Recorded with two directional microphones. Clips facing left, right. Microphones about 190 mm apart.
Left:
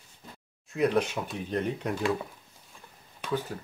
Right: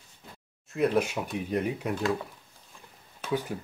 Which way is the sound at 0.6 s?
5° right (ahead or behind).